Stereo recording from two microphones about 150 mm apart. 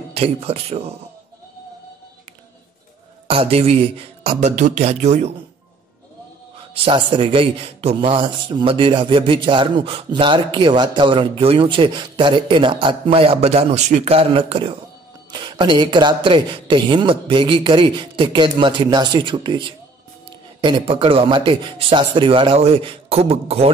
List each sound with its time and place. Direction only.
0.1 s speech: 40° right (ahead or behind)
3.3 s speech: 40° right (ahead or behind)
6.7 s a man's voice: 35° right (ahead or behind)